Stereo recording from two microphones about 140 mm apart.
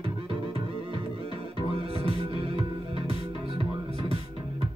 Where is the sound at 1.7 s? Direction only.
45° right (ahead or behind).